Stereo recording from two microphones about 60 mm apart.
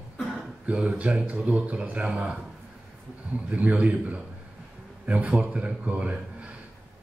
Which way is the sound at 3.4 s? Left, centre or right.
Right.